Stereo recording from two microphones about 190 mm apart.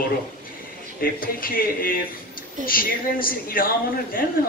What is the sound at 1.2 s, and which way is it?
A man's voice, 50° left (ahead or behind).